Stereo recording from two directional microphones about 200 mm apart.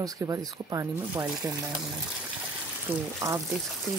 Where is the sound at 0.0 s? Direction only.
15° right (ahead or behind).